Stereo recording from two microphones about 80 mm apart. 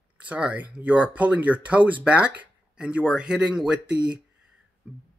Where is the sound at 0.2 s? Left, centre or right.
Centre.